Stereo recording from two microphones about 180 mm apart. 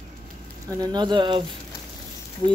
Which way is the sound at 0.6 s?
25° right (ahead or behind).